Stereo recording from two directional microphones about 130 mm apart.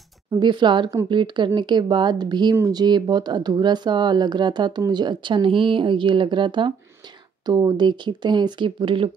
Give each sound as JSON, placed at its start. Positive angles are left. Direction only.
{"t": 0.4, "sound": "speech", "side_deg": -35}